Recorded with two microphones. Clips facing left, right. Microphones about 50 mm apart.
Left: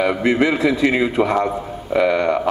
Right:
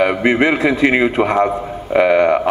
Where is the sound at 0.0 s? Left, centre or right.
Right.